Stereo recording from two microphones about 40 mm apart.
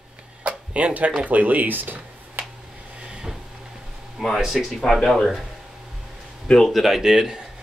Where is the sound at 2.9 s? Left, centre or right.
Right.